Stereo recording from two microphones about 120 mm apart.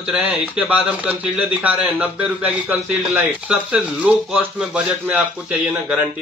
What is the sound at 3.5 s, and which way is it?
A man's voice, 10° right (ahead or behind).